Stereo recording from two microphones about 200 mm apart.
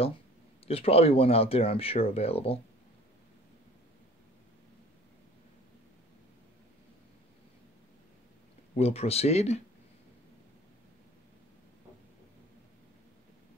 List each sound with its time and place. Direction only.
0.7 s speech: 30° left (ahead or behind)
8.7 s speech: 30° left (ahead or behind)